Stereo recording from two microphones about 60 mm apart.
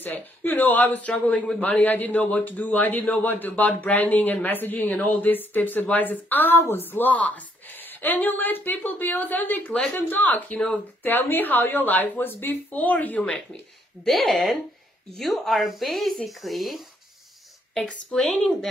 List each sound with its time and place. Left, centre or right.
0.0 s a woman's voice: left
10.5 s a woman's voice: centre
11.0 s a woman's voice: left
14.0 s speech: centre
17.8 s a woman's voice: centre